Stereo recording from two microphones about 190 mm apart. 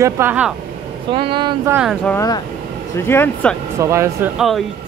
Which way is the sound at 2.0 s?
15° left (ahead or behind).